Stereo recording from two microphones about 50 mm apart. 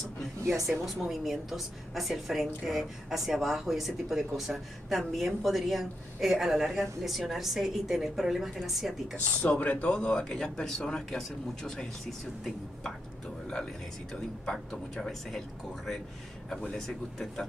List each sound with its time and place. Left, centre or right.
0.4 s speech: right
0.7 s a woman's voice: centre
9.1 s speech: left; by 12.2 s centre
14.4 s a woman's voice: centre